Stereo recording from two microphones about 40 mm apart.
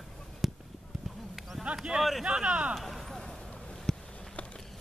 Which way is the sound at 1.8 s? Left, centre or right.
Centre.